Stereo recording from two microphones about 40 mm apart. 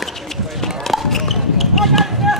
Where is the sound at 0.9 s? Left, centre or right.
Centre.